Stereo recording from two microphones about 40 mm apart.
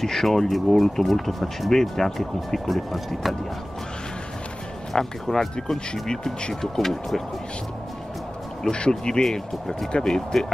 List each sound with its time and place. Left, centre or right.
0.0 s speech: centre
4.9 s speech: centre
8.7 s speech: left